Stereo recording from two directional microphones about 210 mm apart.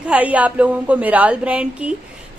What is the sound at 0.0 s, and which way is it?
A woman's voice, 5° right (ahead or behind).